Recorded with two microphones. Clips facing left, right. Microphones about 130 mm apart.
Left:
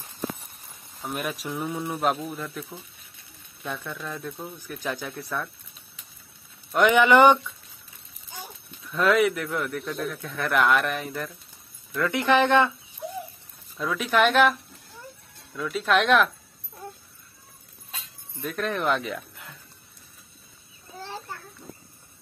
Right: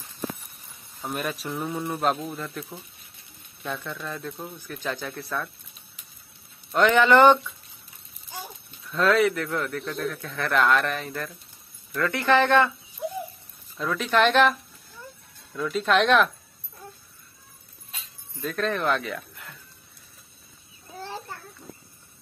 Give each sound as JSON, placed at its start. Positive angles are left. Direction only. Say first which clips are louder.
{"t": 1.1, "sound": "a man's voice", "louder": "even", "side_deg": 10}
{"t": 6.7, "sound": "a man's voice", "louder": "even", "side_deg": 15}
{"t": 8.9, "sound": "a man's voice", "louder": "even", "side_deg": 10}
{"t": 13.7, "sound": "a man's voice", "louder": "even", "side_deg": 10}
{"t": 18.4, "sound": "a man's voice", "louder": "right 1 dB", "side_deg": 10}